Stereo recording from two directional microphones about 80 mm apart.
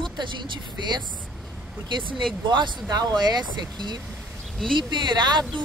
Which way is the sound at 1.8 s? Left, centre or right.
Right.